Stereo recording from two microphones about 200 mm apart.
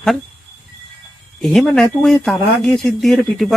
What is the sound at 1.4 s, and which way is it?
Speech, centre (ahead or behind).